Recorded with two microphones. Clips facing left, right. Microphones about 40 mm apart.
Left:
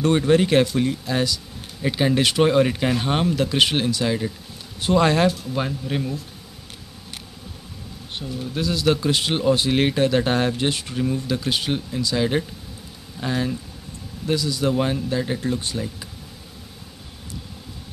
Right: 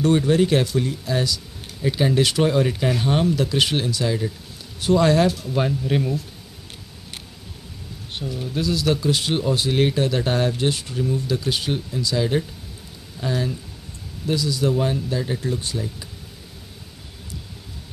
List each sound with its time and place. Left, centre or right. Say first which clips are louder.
0.0 s a man's voice: even; left
5.5 s speech: right 3 dB; centre
8.2 s speech: right 2 dB; centre
8.5 s a man's voice: left 1 dB; left